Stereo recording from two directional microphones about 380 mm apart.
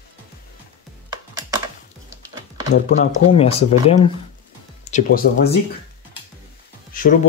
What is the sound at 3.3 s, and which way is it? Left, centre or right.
Speech, centre.